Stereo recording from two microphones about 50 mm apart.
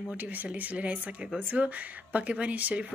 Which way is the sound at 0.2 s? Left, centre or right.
Right.